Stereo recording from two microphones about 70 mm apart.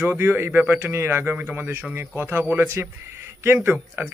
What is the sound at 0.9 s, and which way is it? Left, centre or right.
A man's voice, right.